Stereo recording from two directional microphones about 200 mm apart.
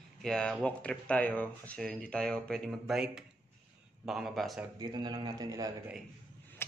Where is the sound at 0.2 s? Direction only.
5° left (ahead or behind).